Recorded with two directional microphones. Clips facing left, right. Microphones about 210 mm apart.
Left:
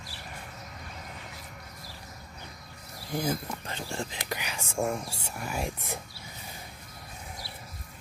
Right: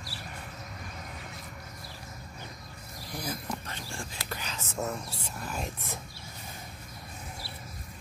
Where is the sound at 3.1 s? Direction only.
25° left (ahead or behind).